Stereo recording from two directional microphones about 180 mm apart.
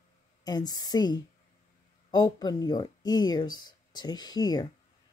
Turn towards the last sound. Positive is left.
turn(degrees=20)  # may be behind; listen again after turning